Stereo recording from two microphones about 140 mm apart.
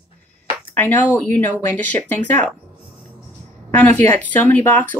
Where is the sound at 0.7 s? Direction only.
15° left (ahead or behind).